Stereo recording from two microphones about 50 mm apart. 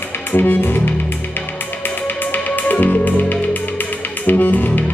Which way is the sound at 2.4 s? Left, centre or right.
Left.